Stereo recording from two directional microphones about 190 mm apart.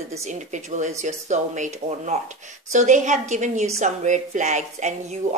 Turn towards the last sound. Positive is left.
turn(degrees=-40)  # may be behind; listen again after turning